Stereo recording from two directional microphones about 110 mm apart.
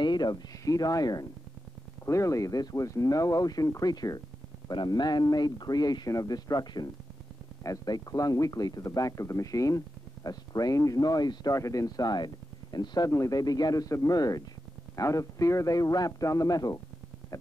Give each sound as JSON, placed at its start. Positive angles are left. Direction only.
{"t": 0.0, "sound": "speech", "side_deg": 40}